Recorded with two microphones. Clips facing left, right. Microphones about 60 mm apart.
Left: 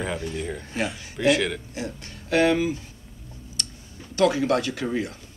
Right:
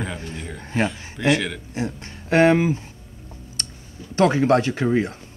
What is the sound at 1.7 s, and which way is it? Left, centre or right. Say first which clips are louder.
Speech: right 5 dB; right.